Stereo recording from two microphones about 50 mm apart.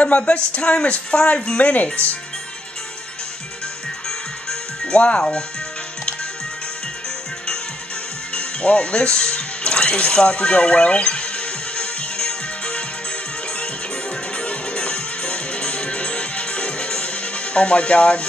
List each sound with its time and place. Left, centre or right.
0.0 s speech: left
4.5 s music: centre
8.4 s music: left
14.3 s music: left